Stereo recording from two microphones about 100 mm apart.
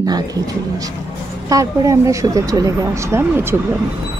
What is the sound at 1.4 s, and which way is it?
Speech, 35° right (ahead or behind).